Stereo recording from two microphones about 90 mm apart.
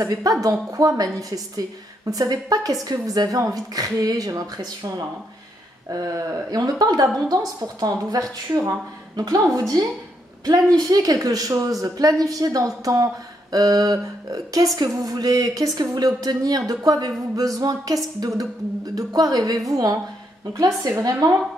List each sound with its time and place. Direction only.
0.1 s a woman's voice: 45° right (ahead or behind)
17.4 s a sound: 40° right (ahead or behind)
18.2 s a woman's voice: 45° right (ahead or behind)